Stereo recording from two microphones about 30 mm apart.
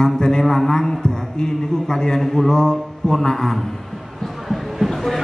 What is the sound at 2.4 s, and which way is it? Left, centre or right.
A man's voice, left.